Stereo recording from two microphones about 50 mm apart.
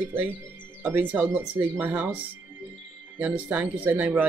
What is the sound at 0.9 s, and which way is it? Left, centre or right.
Speech, right.